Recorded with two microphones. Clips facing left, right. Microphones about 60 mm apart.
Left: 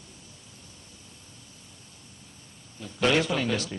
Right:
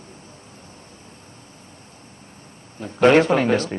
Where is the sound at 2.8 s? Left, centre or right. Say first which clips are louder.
Right 10 dB; right.